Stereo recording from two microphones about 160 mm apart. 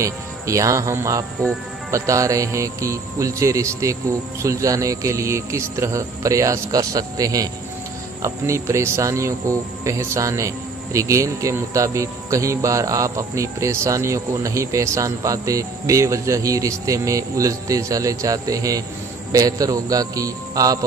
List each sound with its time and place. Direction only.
0.0 s speech: 20° right (ahead or behind)